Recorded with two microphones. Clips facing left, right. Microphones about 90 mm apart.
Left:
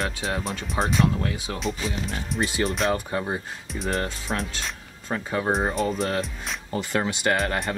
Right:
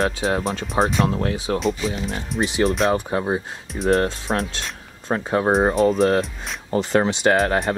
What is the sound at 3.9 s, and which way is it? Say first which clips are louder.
Speech: right 8 dB; 40° right (ahead or behind).